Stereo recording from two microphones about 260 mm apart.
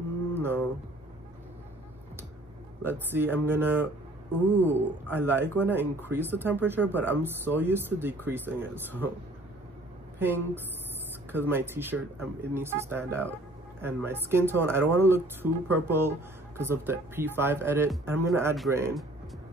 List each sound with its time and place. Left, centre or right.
0.3 s a sound: centre
2.8 s speech: centre
5.1 s speech: centre
10.1 s a woman's voice: centre